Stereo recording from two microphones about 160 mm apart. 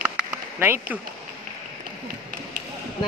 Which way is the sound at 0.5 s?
15° right (ahead or behind).